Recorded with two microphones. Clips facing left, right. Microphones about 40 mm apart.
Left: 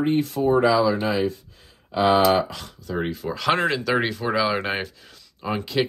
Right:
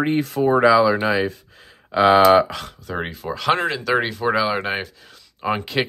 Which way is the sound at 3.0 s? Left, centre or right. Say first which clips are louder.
Even; right.